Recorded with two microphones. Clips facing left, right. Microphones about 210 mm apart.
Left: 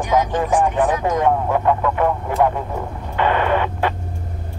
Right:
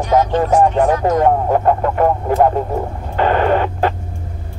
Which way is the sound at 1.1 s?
45° right (ahead or behind).